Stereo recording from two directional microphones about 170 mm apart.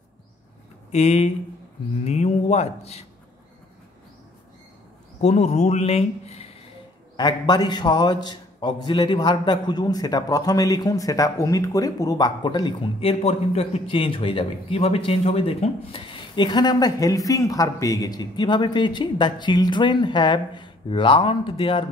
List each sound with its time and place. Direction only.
0.9 s a man's voice: 40° left (ahead or behind)
5.2 s a man's voice: 40° left (ahead or behind)
7.2 s a man's voice: 25° left (ahead or behind)